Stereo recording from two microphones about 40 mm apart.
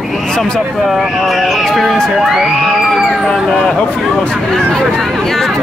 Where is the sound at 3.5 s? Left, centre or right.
Left.